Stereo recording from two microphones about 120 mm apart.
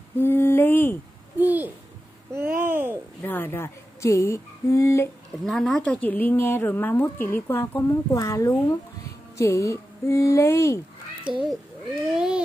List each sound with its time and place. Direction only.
0.2 s a sound: 20° left (ahead or behind)
1.4 s a child's voice: 15° right (ahead or behind)
2.3 s a sound: 20° right (ahead or behind)
3.2 s speech: 20° left (ahead or behind)
5.4 s speech: centre (ahead or behind); by 10.8 s 25° left (ahead or behind)
11.3 s a child's voice: 45° right (ahead or behind)
12.1 s a child's voice: 5° right (ahead or behind)